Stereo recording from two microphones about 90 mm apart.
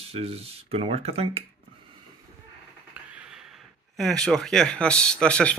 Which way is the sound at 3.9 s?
5° left (ahead or behind).